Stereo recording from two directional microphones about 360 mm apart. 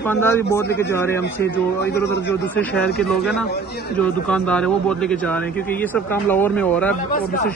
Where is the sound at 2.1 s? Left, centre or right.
Left.